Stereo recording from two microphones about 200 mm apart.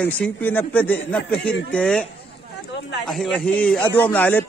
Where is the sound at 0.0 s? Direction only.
10° left (ahead or behind).